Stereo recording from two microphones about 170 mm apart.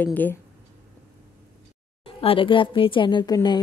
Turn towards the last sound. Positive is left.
turn(degrees=25)  # may be behind; listen again after turning